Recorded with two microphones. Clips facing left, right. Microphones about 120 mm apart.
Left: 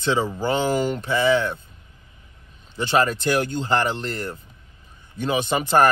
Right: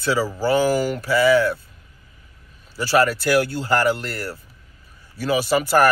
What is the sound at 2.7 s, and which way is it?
Speech, 20° left (ahead or behind).